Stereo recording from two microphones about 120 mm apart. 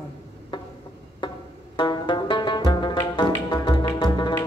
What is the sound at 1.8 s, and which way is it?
Music, 40° left (ahead or behind).